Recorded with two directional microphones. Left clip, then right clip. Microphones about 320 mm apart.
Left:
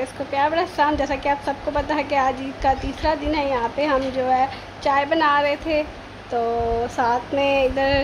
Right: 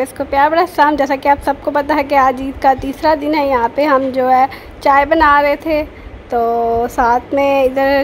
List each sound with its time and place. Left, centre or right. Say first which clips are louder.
0.0 s a woman's voice: right 8 dB; right
7.0 s a woman's voice: right 7 dB; right